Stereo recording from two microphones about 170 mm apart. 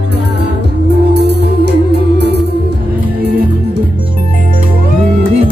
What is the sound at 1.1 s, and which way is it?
Music, 80° right.